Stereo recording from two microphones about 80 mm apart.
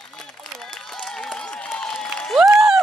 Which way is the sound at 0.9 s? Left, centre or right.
Centre.